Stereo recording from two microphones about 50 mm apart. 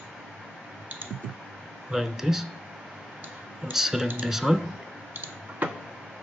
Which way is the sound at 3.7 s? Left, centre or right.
Centre.